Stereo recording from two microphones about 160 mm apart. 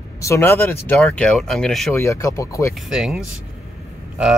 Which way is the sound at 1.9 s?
20° left (ahead or behind).